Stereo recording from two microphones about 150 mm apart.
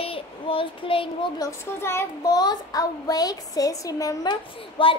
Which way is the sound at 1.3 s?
20° left (ahead or behind).